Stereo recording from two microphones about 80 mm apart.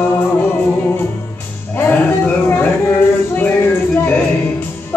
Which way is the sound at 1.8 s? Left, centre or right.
Left.